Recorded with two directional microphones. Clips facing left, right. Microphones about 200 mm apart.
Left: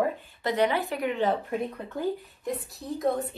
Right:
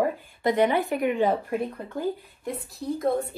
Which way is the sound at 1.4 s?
Centre (ahead or behind).